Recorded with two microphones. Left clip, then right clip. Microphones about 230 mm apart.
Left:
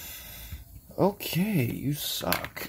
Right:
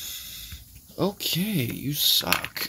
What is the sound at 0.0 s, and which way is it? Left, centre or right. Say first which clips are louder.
Snort: right 7 dB; centre.